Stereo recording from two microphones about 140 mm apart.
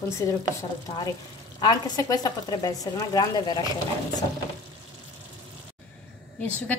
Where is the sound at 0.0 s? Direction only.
20° left (ahead or behind).